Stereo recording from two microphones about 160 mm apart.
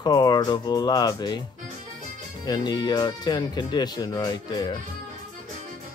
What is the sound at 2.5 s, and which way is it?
Speech, 25° left (ahead or behind).